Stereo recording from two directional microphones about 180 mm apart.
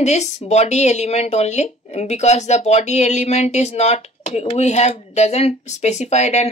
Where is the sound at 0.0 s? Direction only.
40° left (ahead or behind).